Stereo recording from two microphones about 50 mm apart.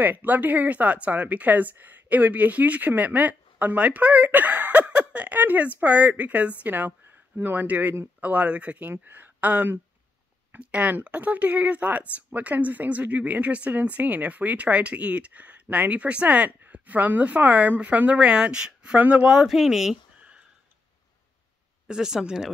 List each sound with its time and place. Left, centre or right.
0.0 s speech: right
8.9 s a woman's voice: right; by 19.5 s centre
19.5 s speech: centre
21.8 s speech: centre